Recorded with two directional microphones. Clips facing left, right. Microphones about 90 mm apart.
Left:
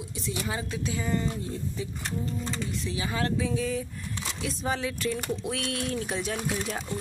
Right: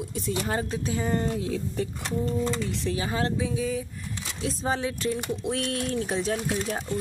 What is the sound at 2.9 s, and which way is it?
Speech, 35° right (ahead or behind).